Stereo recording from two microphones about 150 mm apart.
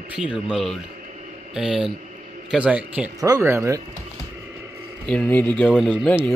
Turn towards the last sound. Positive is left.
turn(degrees=0)  # may be behind; listen again after turning